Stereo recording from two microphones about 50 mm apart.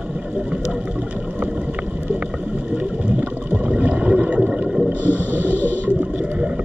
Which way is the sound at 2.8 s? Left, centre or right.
Right.